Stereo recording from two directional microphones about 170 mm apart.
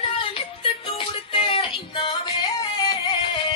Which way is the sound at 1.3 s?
30° left (ahead or behind).